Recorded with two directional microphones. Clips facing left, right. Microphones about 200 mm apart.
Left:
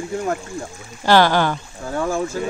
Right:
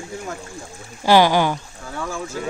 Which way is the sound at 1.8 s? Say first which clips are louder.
Left 7 dB; 45° left (ahead or behind).